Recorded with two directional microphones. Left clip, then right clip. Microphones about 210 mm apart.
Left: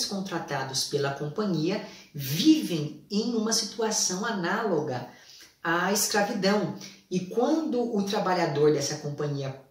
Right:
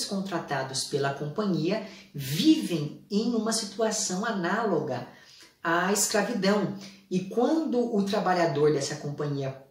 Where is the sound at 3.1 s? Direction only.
Centre (ahead or behind).